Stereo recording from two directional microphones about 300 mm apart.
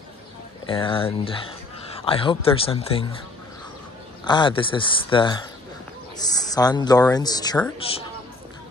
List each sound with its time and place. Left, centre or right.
0.7 s speech: centre
4.2 s speech: centre